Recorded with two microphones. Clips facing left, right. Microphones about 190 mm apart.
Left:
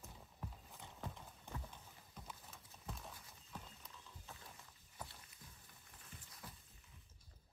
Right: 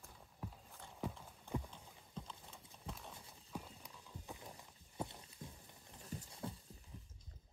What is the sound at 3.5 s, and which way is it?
Horse, 10° right (ahead or behind).